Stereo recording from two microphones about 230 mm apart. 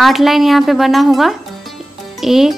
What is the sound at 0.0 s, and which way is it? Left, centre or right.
A woman's voice, centre.